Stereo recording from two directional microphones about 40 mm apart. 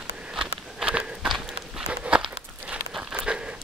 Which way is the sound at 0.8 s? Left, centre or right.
Right.